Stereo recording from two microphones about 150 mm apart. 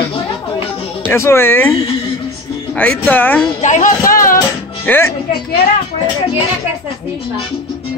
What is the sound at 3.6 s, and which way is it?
Speech, 60° left (ahead or behind).